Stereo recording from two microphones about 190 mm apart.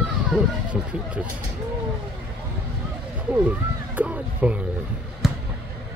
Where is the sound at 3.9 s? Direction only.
5° right (ahead or behind).